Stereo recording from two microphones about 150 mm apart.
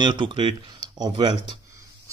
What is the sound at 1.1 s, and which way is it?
Speech, 40° right (ahead or behind).